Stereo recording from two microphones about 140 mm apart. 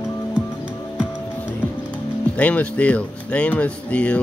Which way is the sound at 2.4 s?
10° left (ahead or behind).